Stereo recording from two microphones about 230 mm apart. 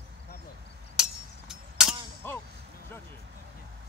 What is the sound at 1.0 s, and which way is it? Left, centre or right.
Chink, centre.